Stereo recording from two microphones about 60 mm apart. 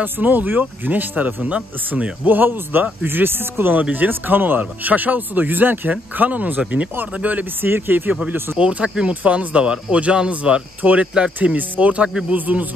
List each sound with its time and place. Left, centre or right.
0.0 s speech: right
2.2 s speech: right
7.6 s speech: right
8.5 s speech: centre